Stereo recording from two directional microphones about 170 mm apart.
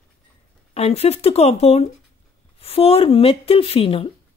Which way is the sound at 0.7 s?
35° left (ahead or behind).